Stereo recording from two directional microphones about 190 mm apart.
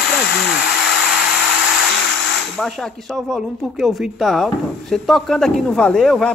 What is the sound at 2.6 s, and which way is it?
Speech, centre (ahead or behind).